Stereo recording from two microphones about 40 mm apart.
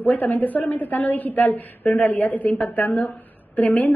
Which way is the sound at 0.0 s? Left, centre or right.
Left.